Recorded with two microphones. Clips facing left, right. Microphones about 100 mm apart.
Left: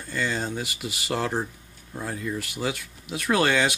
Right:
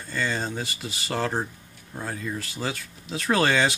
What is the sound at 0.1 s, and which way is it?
Speech, 5° left (ahead or behind).